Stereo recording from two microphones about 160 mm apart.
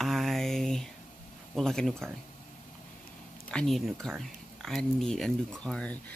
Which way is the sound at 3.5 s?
5° left (ahead or behind).